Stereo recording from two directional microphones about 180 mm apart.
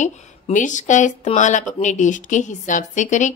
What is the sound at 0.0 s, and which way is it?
Speech, 45° left (ahead or behind).